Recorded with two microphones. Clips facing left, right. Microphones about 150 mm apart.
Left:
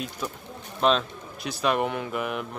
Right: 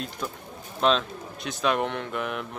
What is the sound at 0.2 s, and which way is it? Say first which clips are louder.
Speech: even; 5° left (ahead or behind).